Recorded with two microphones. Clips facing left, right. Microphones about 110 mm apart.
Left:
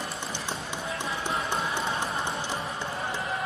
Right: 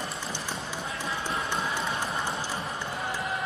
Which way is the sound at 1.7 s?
25° left (ahead or behind).